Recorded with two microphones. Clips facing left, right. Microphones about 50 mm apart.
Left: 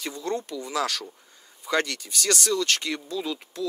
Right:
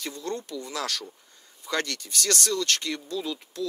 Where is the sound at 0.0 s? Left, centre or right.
Centre.